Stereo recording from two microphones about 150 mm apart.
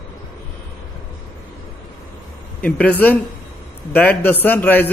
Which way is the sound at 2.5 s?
10° left (ahead or behind).